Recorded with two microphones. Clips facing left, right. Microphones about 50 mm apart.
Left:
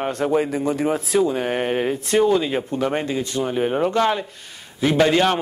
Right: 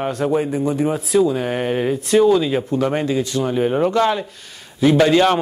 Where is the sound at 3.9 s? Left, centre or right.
Left.